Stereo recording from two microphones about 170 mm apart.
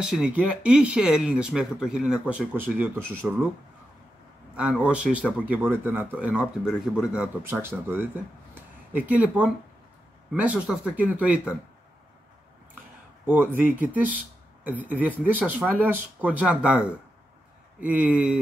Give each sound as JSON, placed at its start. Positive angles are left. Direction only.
{"t": 0.0, "sound": "speech", "side_deg": -5}
{"t": 4.6, "sound": "speech", "side_deg": -5}
{"t": 13.3, "sound": "speech", "side_deg": -10}